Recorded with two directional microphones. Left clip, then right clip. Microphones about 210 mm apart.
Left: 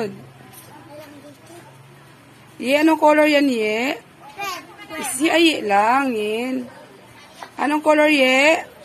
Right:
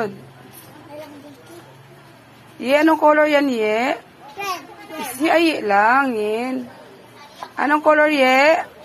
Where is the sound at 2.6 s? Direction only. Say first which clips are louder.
Right 1 dB; 15° left (ahead or behind).